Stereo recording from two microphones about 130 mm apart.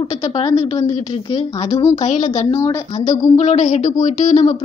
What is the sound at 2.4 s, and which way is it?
Speech, 30° left (ahead or behind).